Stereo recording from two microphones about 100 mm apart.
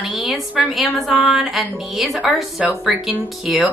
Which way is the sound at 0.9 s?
Centre (ahead or behind).